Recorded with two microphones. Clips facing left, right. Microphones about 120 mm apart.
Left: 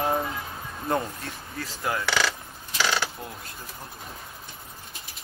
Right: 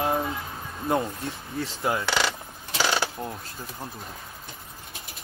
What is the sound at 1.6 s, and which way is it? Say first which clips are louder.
Speech: right 2 dB; 25° right (ahead or behind).